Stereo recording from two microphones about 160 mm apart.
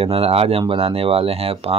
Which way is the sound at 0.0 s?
35° right (ahead or behind).